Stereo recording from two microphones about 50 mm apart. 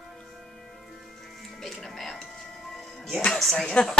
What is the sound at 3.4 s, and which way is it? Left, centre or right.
Speech, centre.